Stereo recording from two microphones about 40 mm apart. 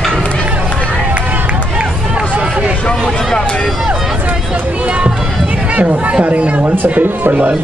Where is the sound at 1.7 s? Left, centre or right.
Right.